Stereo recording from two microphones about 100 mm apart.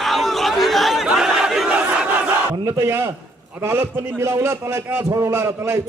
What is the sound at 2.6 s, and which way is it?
A man's voice, 25° right (ahead or behind).